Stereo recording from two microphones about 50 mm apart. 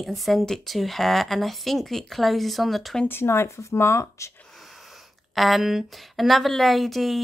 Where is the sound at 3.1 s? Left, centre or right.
Left.